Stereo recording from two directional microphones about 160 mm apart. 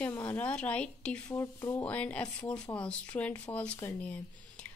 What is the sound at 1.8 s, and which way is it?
A woman's voice, 10° left (ahead or behind).